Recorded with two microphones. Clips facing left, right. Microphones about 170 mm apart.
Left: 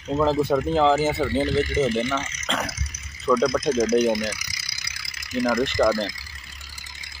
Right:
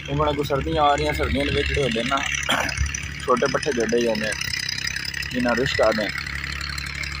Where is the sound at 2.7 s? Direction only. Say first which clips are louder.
Right 3 dB; 70° right (ahead or behind).